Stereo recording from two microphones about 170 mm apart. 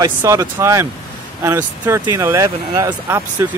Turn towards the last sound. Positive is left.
turn(degrees=-15)  # may be behind; listen again after turning